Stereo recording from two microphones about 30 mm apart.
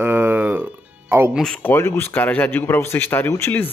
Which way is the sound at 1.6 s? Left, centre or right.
Left.